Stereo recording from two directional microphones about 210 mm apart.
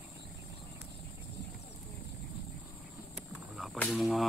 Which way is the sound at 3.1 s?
Centre (ahead or behind).